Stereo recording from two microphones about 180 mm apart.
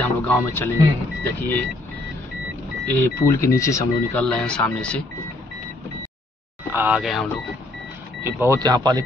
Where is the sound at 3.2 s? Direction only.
15° left (ahead or behind).